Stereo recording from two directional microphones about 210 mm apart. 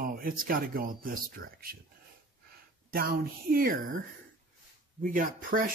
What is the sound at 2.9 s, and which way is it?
Speech, 45° right (ahead or behind).